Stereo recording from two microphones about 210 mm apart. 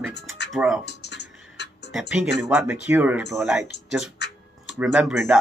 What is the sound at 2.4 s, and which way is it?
Speech, 5° right (ahead or behind).